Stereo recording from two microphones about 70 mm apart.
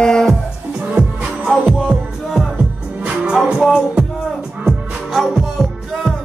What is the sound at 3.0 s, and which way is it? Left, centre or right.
Music, centre.